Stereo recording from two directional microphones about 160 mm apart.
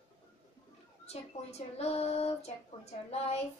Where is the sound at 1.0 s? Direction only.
40° left (ahead or behind).